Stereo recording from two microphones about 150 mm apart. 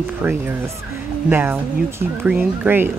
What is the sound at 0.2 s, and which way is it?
Speech, 15° right (ahead or behind).